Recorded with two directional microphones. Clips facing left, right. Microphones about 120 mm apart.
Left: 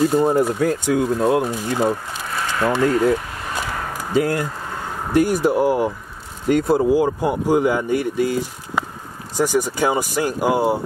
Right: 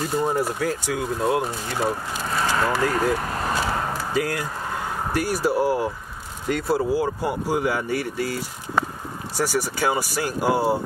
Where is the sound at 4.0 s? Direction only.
25° left (ahead or behind).